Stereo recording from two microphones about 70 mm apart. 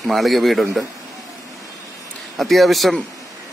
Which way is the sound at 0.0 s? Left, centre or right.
Centre.